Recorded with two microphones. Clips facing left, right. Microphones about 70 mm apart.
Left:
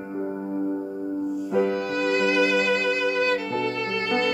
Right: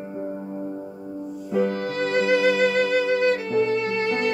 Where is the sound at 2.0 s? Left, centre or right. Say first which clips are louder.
Right 2 dB; right.